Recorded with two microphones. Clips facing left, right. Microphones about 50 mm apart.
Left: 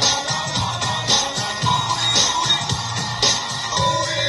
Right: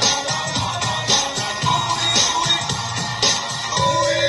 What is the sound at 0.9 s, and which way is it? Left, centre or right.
Music, centre.